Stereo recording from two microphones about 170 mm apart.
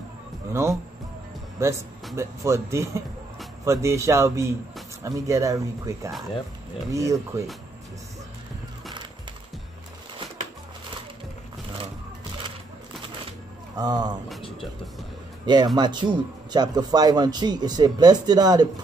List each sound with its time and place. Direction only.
0.5 s speech: 15° right (ahead or behind)
13.7 s speech: 25° right (ahead or behind)
15.4 s speech: 25° right (ahead or behind)